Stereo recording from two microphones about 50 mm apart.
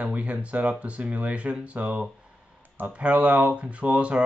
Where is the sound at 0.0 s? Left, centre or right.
Right.